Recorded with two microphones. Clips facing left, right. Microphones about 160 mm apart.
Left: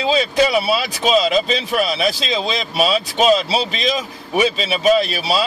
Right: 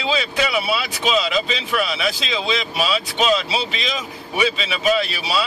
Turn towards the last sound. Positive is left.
turn(degrees=35)  # may be behind; listen again after turning